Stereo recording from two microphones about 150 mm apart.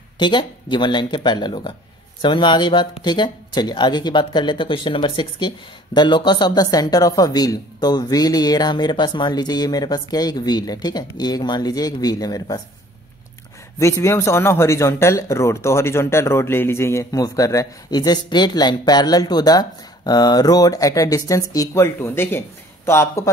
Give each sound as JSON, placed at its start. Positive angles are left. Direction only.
{"t": 0.2, "sound": "speech", "side_deg": 30}
{"t": 13.7, "sound": "speech", "side_deg": 20}